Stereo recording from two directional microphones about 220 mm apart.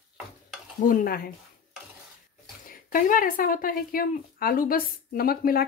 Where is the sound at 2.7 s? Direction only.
40° left (ahead or behind).